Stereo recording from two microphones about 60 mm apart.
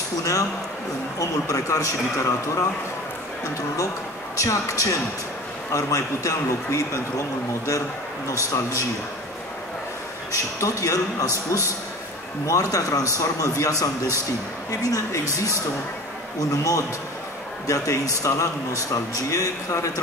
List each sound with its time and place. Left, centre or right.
0.2 s speech: left
4.4 s speech: left
10.6 s a man's voice: left
16.3 s a man's voice: left
17.6 s speech: left